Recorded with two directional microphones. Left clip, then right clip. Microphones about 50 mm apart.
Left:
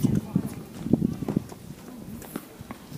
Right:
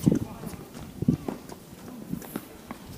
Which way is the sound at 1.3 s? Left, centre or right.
Centre.